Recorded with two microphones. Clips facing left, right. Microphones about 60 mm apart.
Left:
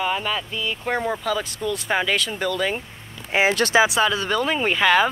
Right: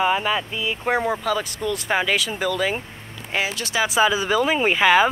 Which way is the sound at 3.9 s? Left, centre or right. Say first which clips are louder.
Right 2 dB; centre.